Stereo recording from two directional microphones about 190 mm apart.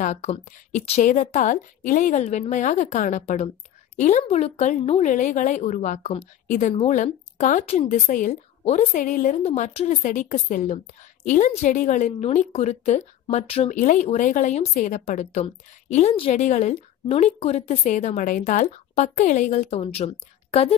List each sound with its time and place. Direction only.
0.0 s a woman's voice: 35° left (ahead or behind)